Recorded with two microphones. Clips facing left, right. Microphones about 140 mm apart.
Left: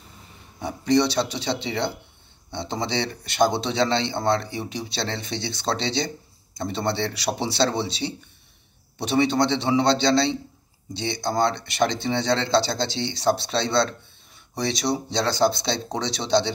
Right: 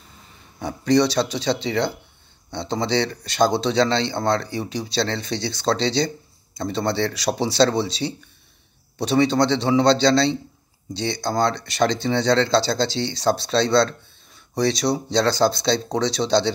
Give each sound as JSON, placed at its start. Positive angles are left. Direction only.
{"t": 0.6, "sound": "speech", "side_deg": 25}